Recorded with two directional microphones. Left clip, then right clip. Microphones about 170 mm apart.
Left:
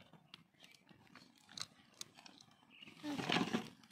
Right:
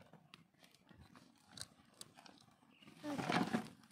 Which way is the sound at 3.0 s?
30° right (ahead or behind).